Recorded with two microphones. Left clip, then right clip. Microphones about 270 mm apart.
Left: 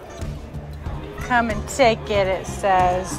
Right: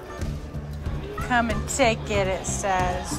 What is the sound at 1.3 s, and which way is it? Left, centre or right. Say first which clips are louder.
Speech: left 3 dB; centre.